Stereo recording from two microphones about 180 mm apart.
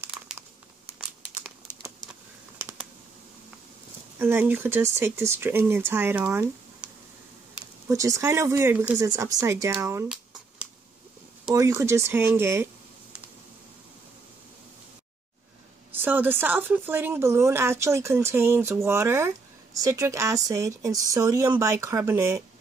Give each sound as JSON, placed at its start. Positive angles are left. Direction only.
{"t": 0.9, "sound": "crumpling", "side_deg": -10}
{"t": 4.2, "sound": "speech", "side_deg": -10}
{"t": 7.9, "sound": "speech", "side_deg": -15}
{"t": 11.5, "sound": "speech", "side_deg": -15}
{"t": 15.9, "sound": "speech", "side_deg": -10}